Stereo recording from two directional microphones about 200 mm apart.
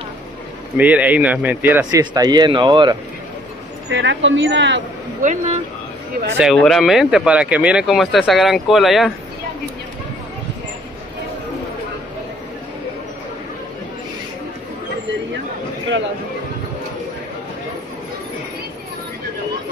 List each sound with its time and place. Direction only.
0.7 s speech: 10° right (ahead or behind); by 3.0 s 25° right (ahead or behind)
3.9 s speech: 65° right (ahead or behind)
5.2 s speech: 35° right (ahead or behind)
6.3 s speech: centre (ahead or behind)